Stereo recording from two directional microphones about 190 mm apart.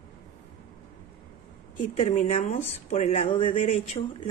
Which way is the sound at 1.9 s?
35° left (ahead or behind).